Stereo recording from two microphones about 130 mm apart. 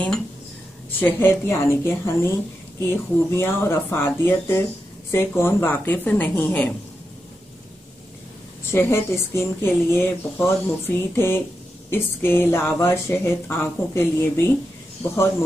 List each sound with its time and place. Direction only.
1.0 s a woman's voice: 20° left (ahead or behind)
8.7 s a woman's voice: 20° left (ahead or behind)